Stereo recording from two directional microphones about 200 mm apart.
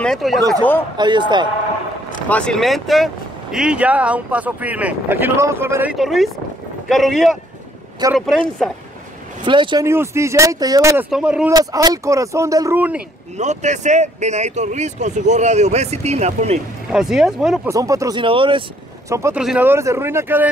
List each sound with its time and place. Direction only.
0.0 s speech: centre (ahead or behind)
0.9 s speech: 20° right (ahead or behind)
2.2 s speech: 5° left (ahead or behind)
9.4 s speech: 25° right (ahead or behind)
9.8 s speech: 15° right (ahead or behind)
11.1 s speech: 5° right (ahead or behind)
11.5 s speech: 20° right (ahead or behind)
13.4 s speech: 35° right (ahead or behind)
16.9 s speech: centre (ahead or behind)
17.6 s speech: 15° right (ahead or behind)
19.0 s speech: 15° right (ahead or behind)